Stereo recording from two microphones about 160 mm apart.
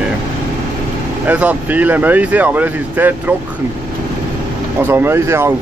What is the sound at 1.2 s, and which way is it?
Speech, 10° right (ahead or behind).